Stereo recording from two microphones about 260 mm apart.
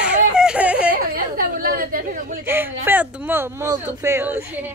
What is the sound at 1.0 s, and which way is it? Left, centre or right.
Speech, right.